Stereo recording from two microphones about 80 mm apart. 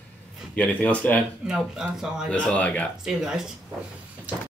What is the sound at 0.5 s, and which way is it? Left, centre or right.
Speech, centre.